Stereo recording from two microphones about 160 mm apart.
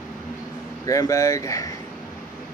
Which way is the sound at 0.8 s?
20° left (ahead or behind).